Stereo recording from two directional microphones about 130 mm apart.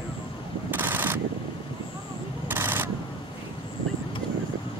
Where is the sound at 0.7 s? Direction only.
15° right (ahead or behind).